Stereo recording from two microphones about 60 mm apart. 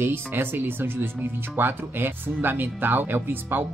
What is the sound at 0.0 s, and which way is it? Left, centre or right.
Speech, right.